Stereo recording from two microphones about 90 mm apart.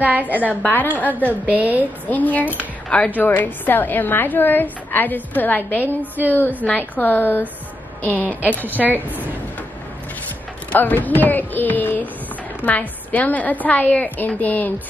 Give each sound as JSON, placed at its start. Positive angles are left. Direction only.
{"t": 0.0, "sound": "a woman's voice", "side_deg": -15}
{"t": 0.5, "sound": "a woman's voice", "side_deg": 20}
{"t": 1.4, "sound": "a woman's voice", "side_deg": -20}
{"t": 2.0, "sound": "a woman's voice", "side_deg": 20}
{"t": 5.9, "sound": "a woman's voice", "side_deg": -20}
{"t": 6.6, "sound": "a woman's voice", "side_deg": 20}
{"t": 8.1, "sound": "a woman's voice", "side_deg": -20}
{"t": 8.8, "sound": "a woman's voice", "side_deg": -5}
{"t": 10.7, "sound": "a woman's voice", "side_deg": 20}